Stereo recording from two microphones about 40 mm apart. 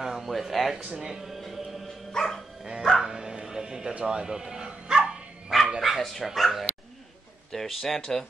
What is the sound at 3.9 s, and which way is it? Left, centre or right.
Bow-wow, centre.